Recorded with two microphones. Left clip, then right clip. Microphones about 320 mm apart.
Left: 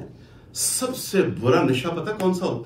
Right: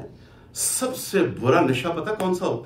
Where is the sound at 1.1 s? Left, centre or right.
Centre.